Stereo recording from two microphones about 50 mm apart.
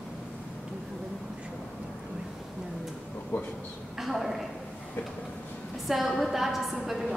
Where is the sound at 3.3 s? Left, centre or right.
Left.